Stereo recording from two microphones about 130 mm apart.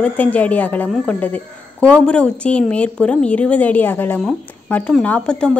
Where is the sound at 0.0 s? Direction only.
10° left (ahead or behind).